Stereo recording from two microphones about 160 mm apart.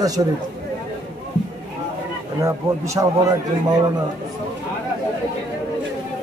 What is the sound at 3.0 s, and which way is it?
Speech, 20° right (ahead or behind).